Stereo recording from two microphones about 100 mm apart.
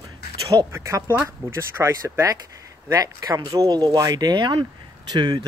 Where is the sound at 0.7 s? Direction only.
30° right (ahead or behind).